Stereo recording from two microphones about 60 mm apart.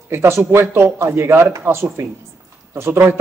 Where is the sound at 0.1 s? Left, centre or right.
Right.